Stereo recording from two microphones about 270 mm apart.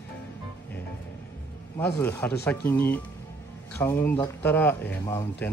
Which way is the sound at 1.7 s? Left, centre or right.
Centre.